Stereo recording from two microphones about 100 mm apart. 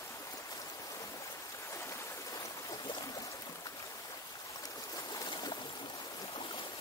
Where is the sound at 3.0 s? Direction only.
35° left (ahead or behind).